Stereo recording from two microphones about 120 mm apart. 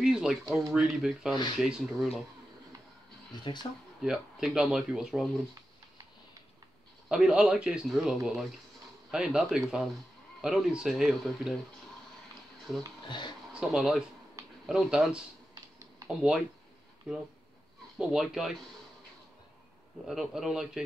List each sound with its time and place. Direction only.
0.0 s a sound: 5° right (ahead or behind)
0.6 s speech: centre (ahead or behind)
3.6 s speech: 40° left (ahead or behind)
4.0 s speech: 5° right (ahead or behind)
7.1 s speech: 5° right (ahead or behind)
13.0 s speech: 40° left (ahead or behind)
13.5 s speech: 5° right (ahead or behind)
17.9 s speech: 5° right (ahead or behind)
20.1 s speech: 5° right (ahead or behind)